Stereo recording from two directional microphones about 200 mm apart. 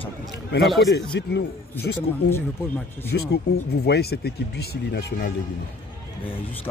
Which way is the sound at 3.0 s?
55° left (ahead or behind).